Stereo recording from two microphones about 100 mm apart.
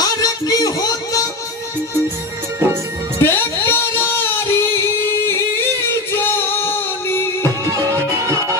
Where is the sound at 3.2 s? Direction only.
25° left (ahead or behind).